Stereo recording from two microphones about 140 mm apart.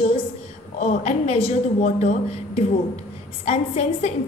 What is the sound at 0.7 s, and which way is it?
A woman's voice, 50° left (ahead or behind).